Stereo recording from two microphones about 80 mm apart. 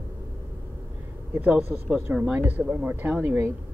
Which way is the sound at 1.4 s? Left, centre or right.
Right.